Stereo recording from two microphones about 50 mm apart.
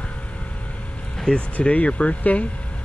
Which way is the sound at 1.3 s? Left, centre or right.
Left.